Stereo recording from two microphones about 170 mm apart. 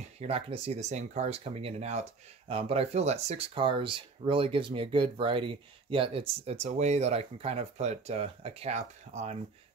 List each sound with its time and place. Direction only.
0.0 s speech: 35° right (ahead or behind)